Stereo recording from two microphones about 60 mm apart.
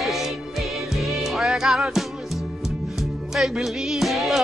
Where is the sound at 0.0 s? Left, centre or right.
Centre.